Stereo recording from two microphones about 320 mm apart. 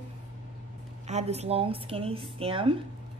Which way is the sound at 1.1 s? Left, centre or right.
Centre.